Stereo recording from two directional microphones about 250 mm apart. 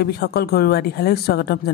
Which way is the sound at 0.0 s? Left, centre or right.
Left.